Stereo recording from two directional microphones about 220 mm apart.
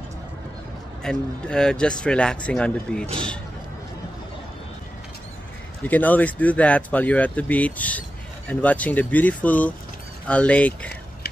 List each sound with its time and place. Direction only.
1.0 s a man's voice: 5° left (ahead or behind)
5.9 s a man's voice: 5° left (ahead or behind)